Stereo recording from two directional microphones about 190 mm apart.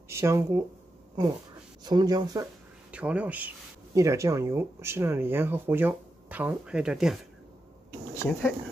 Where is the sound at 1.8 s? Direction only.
20° right (ahead or behind).